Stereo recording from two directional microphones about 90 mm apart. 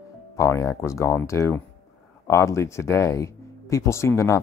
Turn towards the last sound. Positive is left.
turn(degrees=30)  # may be behind; listen again after turning